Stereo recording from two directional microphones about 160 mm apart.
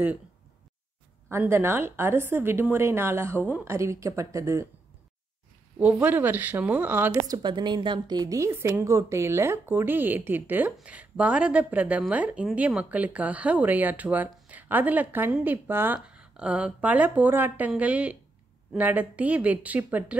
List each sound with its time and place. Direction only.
1.3 s a woman's voice: 15° right (ahead or behind)
5.8 s a woman's voice: 10° right (ahead or behind)
7.2 s a woman's voice: 25° right (ahead or behind); by 20.2 s 10° right (ahead or behind)